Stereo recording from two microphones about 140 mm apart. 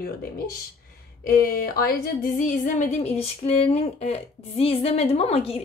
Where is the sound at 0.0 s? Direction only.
90° left.